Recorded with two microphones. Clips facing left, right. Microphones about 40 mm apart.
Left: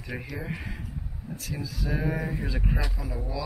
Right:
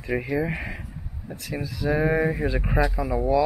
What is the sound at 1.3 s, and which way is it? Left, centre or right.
Speech, right.